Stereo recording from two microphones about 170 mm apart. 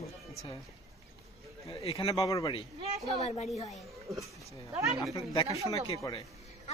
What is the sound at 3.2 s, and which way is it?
Speech, 40° left (ahead or behind).